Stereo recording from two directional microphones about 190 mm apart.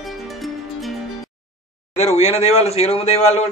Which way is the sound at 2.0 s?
35° left (ahead or behind).